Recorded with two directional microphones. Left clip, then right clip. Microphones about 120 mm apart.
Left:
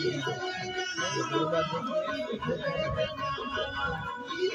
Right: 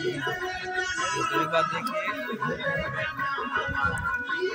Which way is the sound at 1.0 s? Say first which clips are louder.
Right 2 dB; 15° left (ahead or behind).